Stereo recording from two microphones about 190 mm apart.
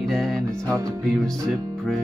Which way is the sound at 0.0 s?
Centre (ahead or behind).